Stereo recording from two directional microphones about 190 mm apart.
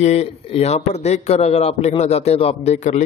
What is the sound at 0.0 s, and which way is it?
A man's voice, 35° left (ahead or behind).